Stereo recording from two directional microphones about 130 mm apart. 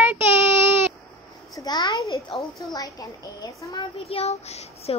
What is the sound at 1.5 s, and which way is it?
A child's voice, 25° left (ahead or behind).